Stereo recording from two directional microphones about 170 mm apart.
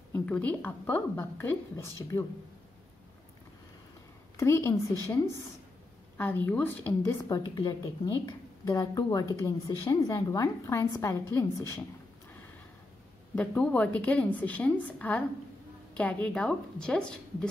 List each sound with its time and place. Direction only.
0.1 s a woman's voice: 10° left (ahead or behind)
4.4 s a woman's voice: 15° left (ahead or behind)
13.3 s a woman's voice: 5° left (ahead or behind)